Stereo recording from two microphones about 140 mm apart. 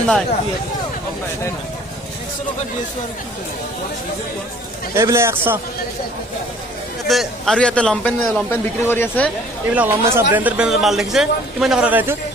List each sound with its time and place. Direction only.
4.9 s a man's voice: 20° right (ahead or behind)
7.1 s a man's voice: centre (ahead or behind)
8.5 s speech: 15° left (ahead or behind)
9.7 s a man's voice: 15° right (ahead or behind)